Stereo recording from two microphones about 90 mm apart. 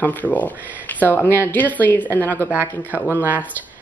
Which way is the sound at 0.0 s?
20° left (ahead or behind).